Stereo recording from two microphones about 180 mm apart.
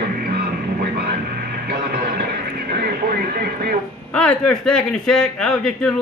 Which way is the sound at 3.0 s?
60° right (ahead or behind).